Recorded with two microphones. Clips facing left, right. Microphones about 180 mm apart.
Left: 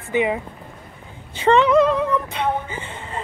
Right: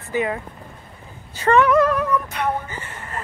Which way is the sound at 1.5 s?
20° left (ahead or behind).